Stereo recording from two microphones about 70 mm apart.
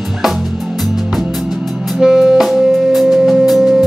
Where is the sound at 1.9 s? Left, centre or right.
Centre.